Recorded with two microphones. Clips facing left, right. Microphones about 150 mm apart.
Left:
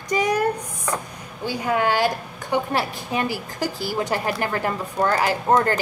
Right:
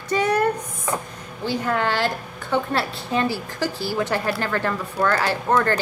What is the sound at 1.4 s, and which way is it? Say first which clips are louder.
A woman's voice: left 1 dB; 10° left (ahead or behind).